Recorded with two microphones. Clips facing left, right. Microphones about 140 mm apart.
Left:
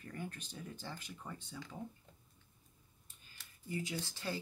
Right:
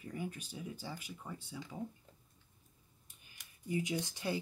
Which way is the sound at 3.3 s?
15° right (ahead or behind).